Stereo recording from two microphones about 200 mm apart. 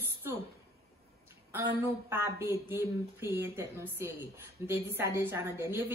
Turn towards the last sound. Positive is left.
turn(degrees=-10)  # may be behind; listen again after turning